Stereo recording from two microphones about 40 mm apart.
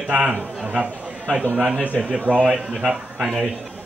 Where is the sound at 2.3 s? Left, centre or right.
Right.